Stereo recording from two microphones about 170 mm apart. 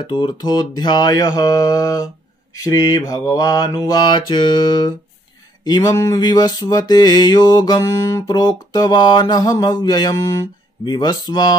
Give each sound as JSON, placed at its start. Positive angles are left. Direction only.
{"t": 0.0, "sound": "mantra", "side_deg": 25}